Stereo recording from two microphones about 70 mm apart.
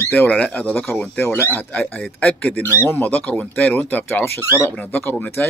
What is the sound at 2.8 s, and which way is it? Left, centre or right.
Speech, left.